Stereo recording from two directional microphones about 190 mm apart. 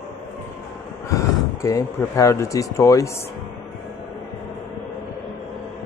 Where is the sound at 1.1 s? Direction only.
15° left (ahead or behind).